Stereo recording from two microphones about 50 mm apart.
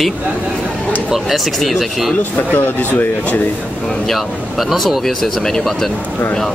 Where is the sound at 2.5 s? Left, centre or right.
Left.